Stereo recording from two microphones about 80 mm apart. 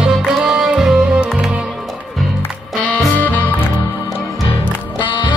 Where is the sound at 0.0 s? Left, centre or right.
Centre.